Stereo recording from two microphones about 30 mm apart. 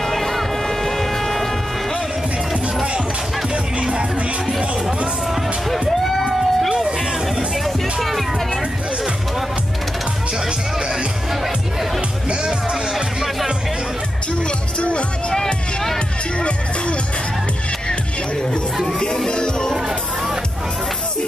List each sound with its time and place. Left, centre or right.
0.0 s vehicle: centre
5.7 s a sound: centre
7.6 s music: centre
12.9 s music: centre
14.8 s music: left
15.4 s music: centre
16.3 s music: left
18.9 s music: left